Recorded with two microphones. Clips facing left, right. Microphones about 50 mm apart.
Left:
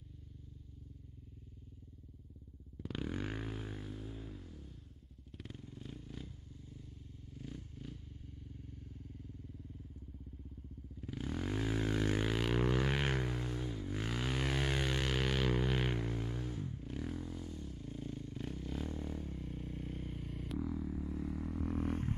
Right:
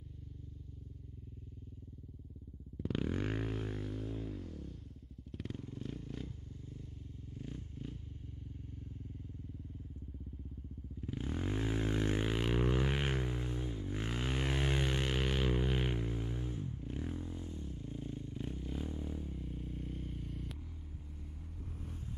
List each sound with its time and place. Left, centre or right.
2.8 s a sound: right
5.3 s vehicle: right
11.1 s vehicle: right; by 16.0 s centre
16.1 s a sound: centre
16.8 s motorcycle: right; by 20.5 s centre
21.3 s vehicle: left